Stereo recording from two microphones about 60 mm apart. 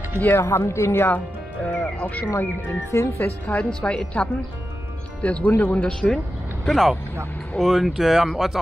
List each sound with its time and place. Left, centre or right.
0.4 s speech: left
1.1 s speech: left
2.7 s speech: left
3.2 s a woman's voice: left
3.8 s speech: centre
5.9 s speech: centre